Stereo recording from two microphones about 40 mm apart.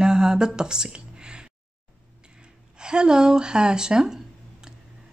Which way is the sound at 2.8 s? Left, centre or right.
Centre.